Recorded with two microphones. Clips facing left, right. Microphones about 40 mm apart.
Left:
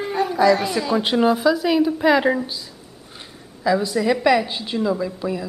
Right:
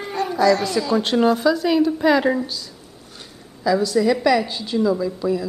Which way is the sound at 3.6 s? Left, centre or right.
Centre.